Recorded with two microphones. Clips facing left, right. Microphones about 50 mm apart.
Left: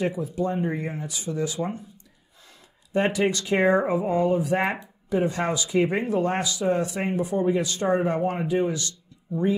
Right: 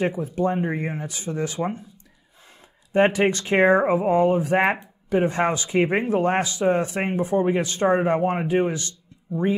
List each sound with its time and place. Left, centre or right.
0.0 s speech: right
2.9 s speech: right